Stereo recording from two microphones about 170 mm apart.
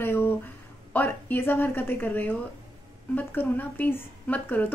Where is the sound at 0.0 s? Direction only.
15° left (ahead or behind).